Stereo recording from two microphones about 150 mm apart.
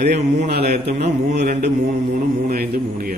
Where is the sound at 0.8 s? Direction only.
50° right (ahead or behind).